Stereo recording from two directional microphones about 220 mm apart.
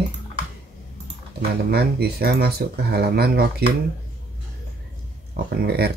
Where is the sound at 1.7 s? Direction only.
45° right (ahead or behind).